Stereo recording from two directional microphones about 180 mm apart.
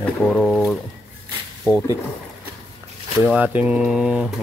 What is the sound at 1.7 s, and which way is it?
Speech, 15° right (ahead or behind).